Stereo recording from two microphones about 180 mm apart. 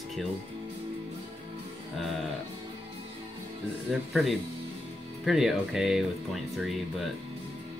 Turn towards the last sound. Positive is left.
turn(degrees=0)  # may be behind; listen again after turning